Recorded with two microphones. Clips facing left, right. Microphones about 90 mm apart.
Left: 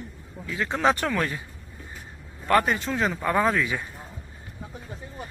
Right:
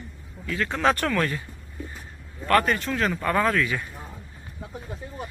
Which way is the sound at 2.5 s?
15° left (ahead or behind).